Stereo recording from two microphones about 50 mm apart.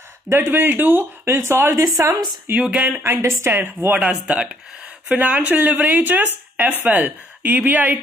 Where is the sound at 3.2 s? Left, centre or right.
Right.